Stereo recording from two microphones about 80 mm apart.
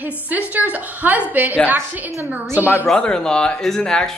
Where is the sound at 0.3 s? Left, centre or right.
Right.